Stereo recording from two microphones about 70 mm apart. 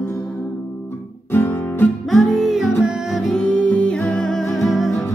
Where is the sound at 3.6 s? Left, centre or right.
Centre.